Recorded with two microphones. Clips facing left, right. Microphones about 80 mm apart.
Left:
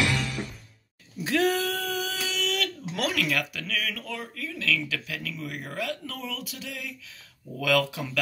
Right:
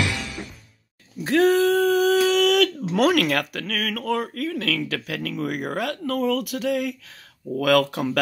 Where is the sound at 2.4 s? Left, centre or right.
Right.